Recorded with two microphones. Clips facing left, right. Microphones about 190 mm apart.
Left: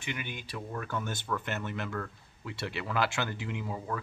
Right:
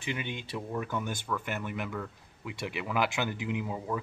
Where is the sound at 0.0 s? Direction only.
25° right (ahead or behind).